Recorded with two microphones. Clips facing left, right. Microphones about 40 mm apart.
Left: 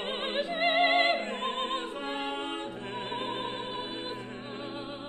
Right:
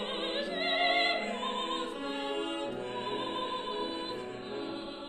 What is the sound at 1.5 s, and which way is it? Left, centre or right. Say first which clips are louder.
Music: left 2 dB; left.